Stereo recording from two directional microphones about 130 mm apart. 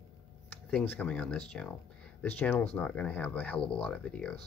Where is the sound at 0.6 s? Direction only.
10° left (ahead or behind).